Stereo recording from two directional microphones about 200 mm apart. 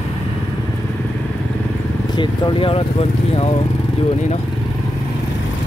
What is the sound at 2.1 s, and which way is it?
Speech, 25° left (ahead or behind).